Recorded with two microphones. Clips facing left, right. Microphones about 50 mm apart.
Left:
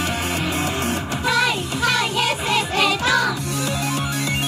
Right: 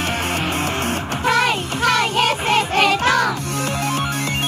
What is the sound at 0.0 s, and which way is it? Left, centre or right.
Music, right.